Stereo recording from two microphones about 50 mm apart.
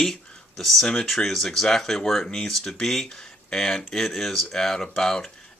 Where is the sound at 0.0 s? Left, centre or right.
Centre.